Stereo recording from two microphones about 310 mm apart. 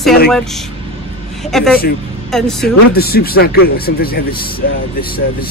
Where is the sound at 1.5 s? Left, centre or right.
Centre.